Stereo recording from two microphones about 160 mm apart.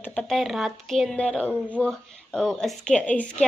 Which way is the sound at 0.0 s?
5° left (ahead or behind).